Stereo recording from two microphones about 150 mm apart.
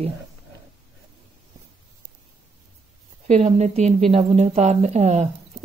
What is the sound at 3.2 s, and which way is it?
Speech, 50° right (ahead or behind).